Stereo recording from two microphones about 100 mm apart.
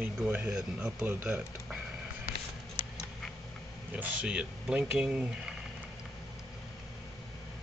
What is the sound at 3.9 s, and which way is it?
Speech, 15° right (ahead or behind).